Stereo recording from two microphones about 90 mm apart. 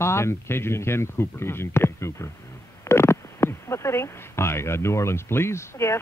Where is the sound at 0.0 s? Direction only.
30° left (ahead or behind).